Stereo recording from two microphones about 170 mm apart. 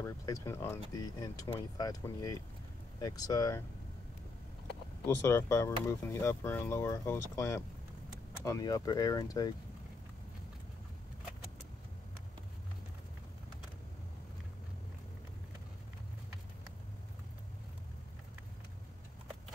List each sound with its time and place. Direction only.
0.0 s speech: 15° left (ahead or behind)
5.0 s speech: 15° left (ahead or behind)